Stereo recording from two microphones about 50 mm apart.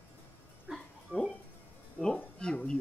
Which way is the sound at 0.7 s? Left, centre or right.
Centre.